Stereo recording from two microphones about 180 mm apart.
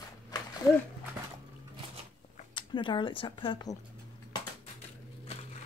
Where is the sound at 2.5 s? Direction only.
25° left (ahead or behind).